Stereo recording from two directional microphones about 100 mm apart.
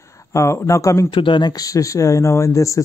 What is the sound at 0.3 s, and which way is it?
Speech, 30° left (ahead or behind).